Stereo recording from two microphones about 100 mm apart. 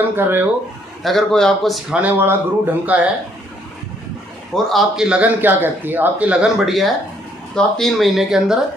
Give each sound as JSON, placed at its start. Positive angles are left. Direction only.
{"t": 0.1, "sound": "speech", "side_deg": -20}
{"t": 1.0, "sound": "speech", "side_deg": 5}
{"t": 2.0, "sound": "speech", "side_deg": -15}
{"t": 4.6, "sound": "speech", "side_deg": -5}